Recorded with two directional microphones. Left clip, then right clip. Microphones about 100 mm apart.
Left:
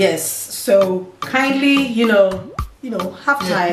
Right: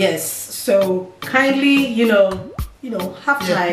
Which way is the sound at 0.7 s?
10° left (ahead or behind).